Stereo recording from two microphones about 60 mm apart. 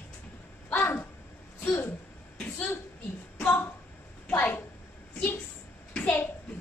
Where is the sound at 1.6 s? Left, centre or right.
Left.